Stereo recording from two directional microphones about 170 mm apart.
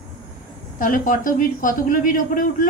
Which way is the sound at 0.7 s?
55° left (ahead or behind).